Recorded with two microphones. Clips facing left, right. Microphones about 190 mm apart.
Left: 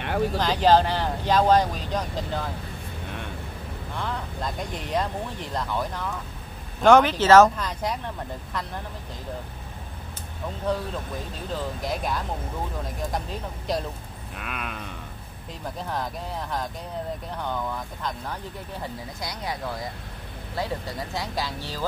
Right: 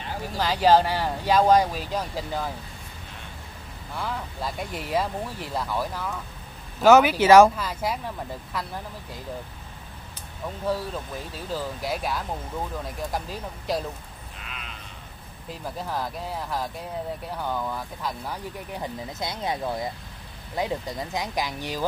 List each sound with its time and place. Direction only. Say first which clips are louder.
0.0 s a sound: left 8 dB; 65° left (ahead or behind)
0.4 s speech: right 1 dB; 10° right (ahead or behind)
4.0 s speech: even; 5° right (ahead or behind)
11.8 s speech: even; 5° right (ahead or behind)
14.3 s sheep: left 9 dB; 55° left (ahead or behind)
15.8 s speech: even; 5° right (ahead or behind)